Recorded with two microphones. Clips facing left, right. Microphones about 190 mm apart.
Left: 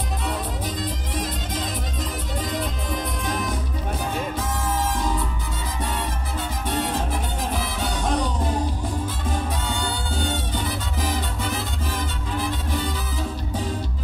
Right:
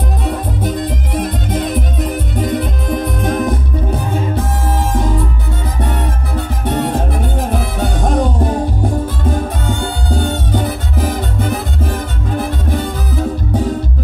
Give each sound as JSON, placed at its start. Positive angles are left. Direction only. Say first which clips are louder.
{"t": 0.2, "sound": "music", "louder": "right 8 dB", "side_deg": -55}
{"t": 6.6, "sound": "music", "louder": "right 8 dB", "side_deg": -60}